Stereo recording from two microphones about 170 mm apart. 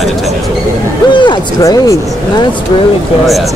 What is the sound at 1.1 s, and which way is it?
Speech, 25° left (ahead or behind).